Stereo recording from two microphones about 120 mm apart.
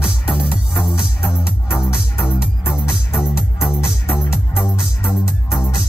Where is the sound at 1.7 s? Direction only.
20° left (ahead or behind).